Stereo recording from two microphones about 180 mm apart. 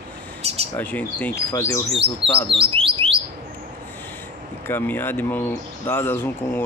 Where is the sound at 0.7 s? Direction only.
10° left (ahead or behind).